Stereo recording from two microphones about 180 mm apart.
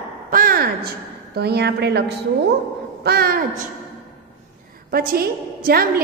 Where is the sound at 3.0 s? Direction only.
60° right (ahead or behind).